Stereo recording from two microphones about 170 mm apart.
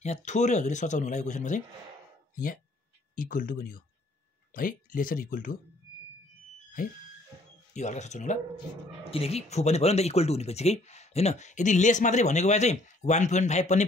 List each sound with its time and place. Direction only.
0.0 s speech: 45° left (ahead or behind)
7.7 s speech: 45° left (ahead or behind)